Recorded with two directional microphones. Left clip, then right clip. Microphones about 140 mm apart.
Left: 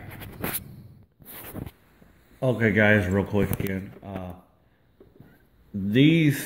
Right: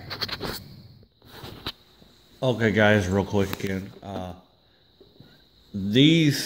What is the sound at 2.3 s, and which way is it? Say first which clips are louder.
Speech: even; centre (ahead or behind).